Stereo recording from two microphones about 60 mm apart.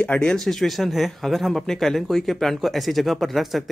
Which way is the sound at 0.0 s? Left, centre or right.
Centre.